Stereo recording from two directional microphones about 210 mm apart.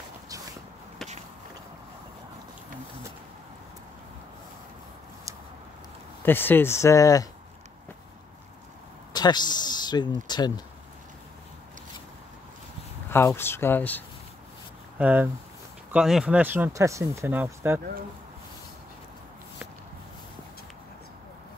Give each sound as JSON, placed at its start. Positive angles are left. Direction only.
{"t": 6.2, "sound": "speech", "side_deg": 10}
{"t": 9.1, "sound": "speech", "side_deg": 20}
{"t": 13.1, "sound": "speech", "side_deg": 10}
{"t": 15.0, "sound": "speech", "side_deg": -5}